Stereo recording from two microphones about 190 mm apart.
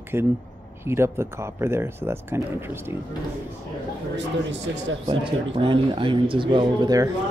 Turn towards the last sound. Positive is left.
turn(degrees=-20)  # may be behind; listen again after turning